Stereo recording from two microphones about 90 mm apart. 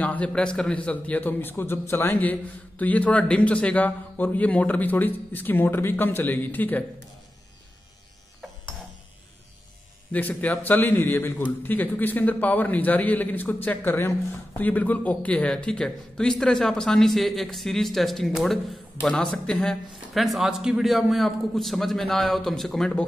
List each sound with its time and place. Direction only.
0.0 s a man's voice: 15° left (ahead or behind)
2.8 s a man's voice: 15° left (ahead or behind)
10.1 s a man's voice: 20° left (ahead or behind); by 18.8 s centre (ahead or behind)
18.9 s a man's voice: 15° left (ahead or behind)